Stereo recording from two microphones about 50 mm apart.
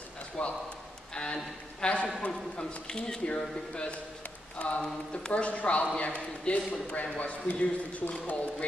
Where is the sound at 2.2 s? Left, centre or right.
Centre.